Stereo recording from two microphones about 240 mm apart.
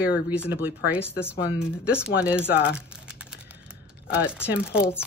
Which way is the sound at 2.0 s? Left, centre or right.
Centre.